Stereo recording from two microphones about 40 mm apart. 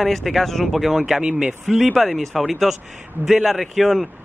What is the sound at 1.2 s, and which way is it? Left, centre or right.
Speech, right.